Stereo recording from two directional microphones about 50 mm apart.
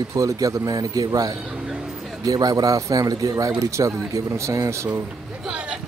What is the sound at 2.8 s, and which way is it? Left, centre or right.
Speech, right.